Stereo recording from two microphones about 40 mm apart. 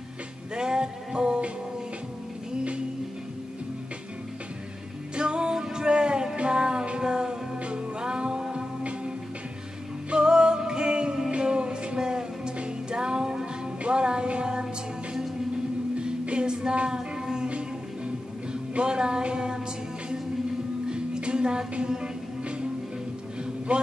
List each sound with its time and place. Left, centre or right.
0.6 s music: right
5.1 s music: right
10.1 s music: centre
16.0 s music: right
20.9 s music: right
23.7 s a sound: right